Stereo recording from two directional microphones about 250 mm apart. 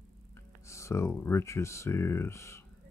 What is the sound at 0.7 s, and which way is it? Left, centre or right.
Speech, centre.